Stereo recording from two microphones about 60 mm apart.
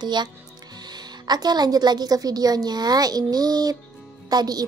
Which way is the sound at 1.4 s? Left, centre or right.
Right.